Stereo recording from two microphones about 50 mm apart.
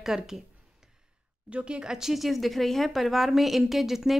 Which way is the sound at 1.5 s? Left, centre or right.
Right.